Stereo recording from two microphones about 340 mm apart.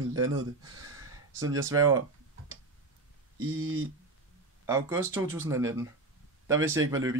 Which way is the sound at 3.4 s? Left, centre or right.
Right.